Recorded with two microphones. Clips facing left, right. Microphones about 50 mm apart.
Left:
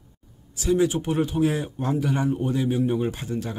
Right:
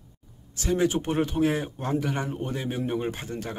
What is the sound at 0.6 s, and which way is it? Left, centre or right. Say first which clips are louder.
Speech: left 3 dB; right.